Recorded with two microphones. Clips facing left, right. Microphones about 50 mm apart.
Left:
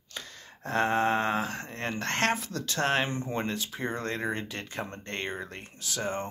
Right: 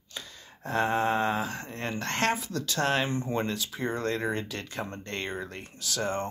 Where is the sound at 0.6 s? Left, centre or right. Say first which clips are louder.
Even; left; by 6.2 s centre.